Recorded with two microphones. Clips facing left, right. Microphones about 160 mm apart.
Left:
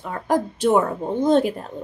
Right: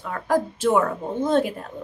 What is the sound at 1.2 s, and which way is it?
Speech, 20° left (ahead or behind).